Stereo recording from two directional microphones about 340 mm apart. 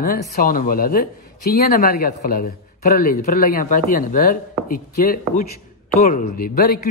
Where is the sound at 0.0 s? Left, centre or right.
Left.